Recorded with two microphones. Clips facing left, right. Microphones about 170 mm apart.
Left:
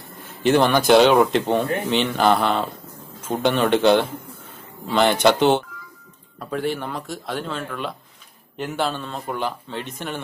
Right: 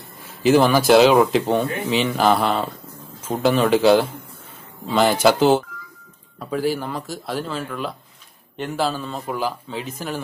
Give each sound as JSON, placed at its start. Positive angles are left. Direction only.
{"t": 0.4, "sound": "speech", "side_deg": 0}